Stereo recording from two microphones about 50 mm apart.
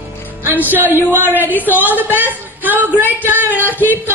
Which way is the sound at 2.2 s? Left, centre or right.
Right.